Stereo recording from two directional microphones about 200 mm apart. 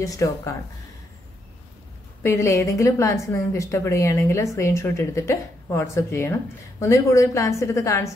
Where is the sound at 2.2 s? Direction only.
15° left (ahead or behind).